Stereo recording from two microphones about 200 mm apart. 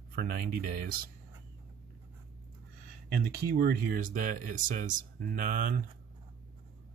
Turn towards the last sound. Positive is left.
turn(degrees=-45)  # may be behind; listen again after turning